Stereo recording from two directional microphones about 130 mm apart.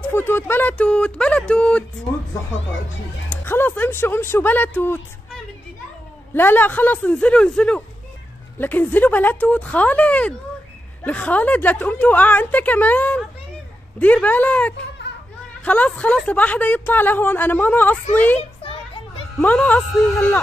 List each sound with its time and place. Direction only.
0.0 s a woman's voice: 15° left (ahead or behind)
3.3 s a woman's voice: 15° left (ahead or behind)
6.3 s a woman's voice: 15° left (ahead or behind)
18.6 s children playing: 45° left (ahead or behind)
19.4 s a woman's voice: 10° left (ahead or behind)